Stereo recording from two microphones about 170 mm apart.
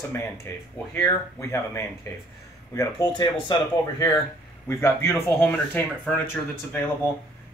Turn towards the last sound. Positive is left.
turn(degrees=10)  # may be behind; listen again after turning